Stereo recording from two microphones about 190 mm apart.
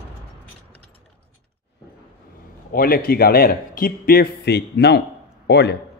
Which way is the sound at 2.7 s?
50° left (ahead or behind).